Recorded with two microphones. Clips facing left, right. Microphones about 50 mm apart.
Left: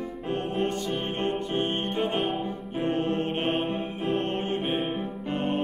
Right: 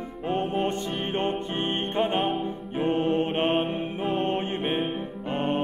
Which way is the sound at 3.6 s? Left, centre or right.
Centre.